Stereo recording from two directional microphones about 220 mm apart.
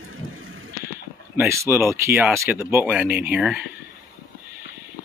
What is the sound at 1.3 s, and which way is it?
Speech, 10° right (ahead or behind).